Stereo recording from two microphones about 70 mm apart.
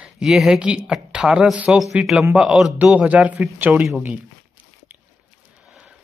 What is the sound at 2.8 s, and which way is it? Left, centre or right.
A man's voice, centre.